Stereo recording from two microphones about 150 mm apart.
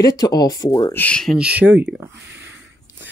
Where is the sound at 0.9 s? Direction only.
10° left (ahead or behind); by 2.5 s 15° right (ahead or behind).